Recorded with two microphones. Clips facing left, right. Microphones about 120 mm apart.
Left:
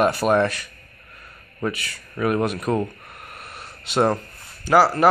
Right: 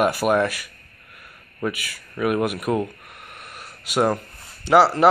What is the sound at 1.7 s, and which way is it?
Speech, 10° right (ahead or behind).